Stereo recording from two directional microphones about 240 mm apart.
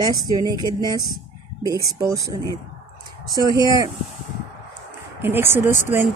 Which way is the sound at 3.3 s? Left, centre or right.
Centre.